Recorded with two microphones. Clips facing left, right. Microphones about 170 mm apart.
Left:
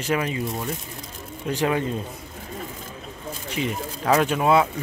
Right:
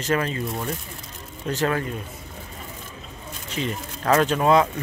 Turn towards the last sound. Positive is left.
turn(degrees=5)  # may be behind; listen again after turning